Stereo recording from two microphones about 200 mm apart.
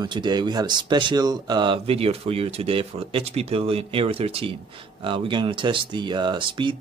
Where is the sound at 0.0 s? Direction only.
20° right (ahead or behind).